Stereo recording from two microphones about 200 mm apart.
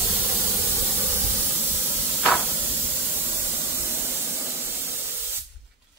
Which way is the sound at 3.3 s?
10° right (ahead or behind).